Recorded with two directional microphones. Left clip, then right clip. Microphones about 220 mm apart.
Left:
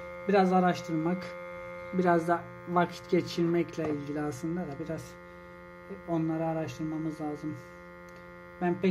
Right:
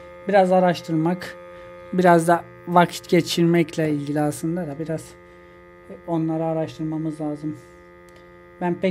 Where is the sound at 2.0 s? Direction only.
40° right (ahead or behind).